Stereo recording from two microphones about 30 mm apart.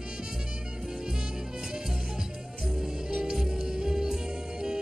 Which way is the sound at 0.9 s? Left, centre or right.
Right.